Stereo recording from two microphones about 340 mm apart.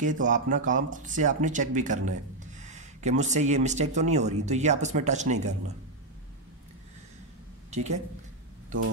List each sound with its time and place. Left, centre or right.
0.0 s speech: right
7.7 s speech: centre